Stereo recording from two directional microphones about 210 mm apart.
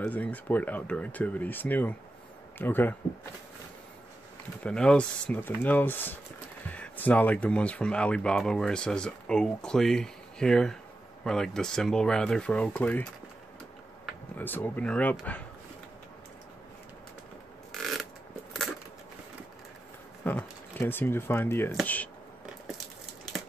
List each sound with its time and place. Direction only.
0.0 s speech: 5° left (ahead or behind)
4.6 s speech: 5° left (ahead or behind)
14.4 s speech: 10° left (ahead or behind)
20.2 s speech: 10° left (ahead or behind)